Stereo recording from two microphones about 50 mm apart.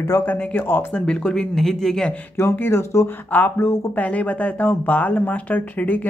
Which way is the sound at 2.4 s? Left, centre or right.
Left.